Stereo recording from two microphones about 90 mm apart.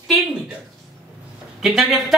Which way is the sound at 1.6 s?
5° right (ahead or behind).